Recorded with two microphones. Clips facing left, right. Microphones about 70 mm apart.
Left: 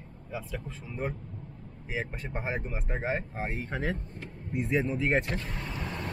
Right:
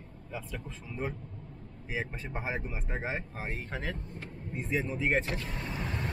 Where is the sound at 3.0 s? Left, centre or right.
Centre.